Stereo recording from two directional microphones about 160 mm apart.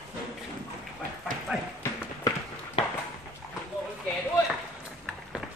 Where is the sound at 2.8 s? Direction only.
35° left (ahead or behind).